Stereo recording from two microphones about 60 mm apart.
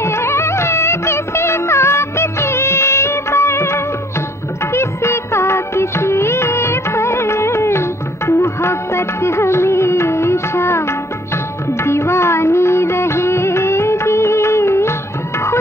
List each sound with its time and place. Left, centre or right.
0.0 s music: left
11.8 s music of bollywood: left